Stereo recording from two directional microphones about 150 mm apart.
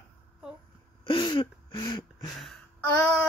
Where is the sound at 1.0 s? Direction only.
30° left (ahead or behind).